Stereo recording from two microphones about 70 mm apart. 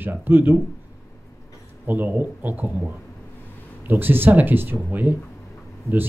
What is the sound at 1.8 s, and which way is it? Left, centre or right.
Speech, right.